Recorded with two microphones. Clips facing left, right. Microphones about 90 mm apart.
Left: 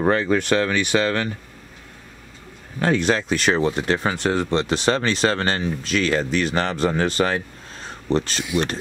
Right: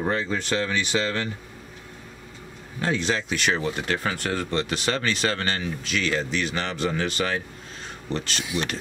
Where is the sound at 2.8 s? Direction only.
55° left (ahead or behind); by 8.6 s 35° left (ahead or behind).